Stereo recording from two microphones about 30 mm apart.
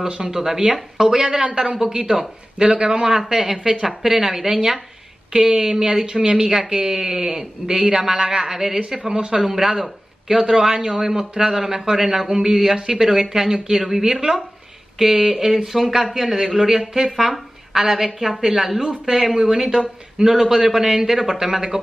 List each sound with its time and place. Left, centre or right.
0.1 s speech: right
5.5 s a man's voice: right
17.3 s a woman's voice: centre